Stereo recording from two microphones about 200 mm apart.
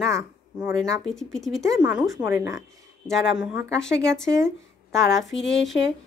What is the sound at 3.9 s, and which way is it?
Speech, 60° left (ahead or behind).